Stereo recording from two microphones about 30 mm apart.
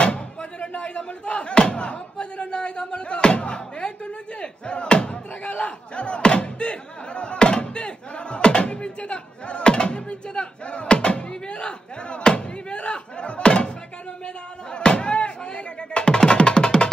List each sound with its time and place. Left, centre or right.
0.0 s speech: left